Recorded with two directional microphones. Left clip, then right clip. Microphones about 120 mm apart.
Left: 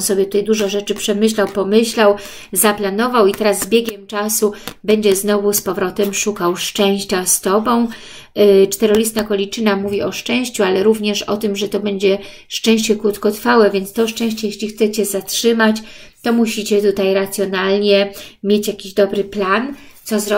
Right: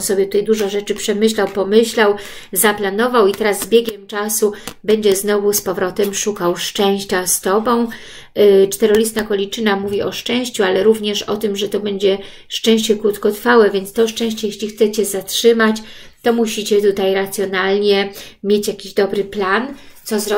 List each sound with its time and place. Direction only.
0.1 s speech: 35° left (ahead or behind)
1.4 s speech: 20° left (ahead or behind)
1.7 s speech: 40° left (ahead or behind)